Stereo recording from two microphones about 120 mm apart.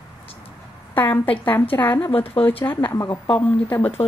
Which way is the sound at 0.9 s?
15° left (ahead or behind).